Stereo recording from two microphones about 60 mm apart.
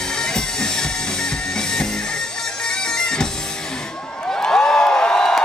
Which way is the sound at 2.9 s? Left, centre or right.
Centre.